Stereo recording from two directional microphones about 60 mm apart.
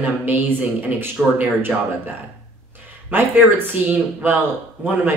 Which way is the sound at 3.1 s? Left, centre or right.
Right.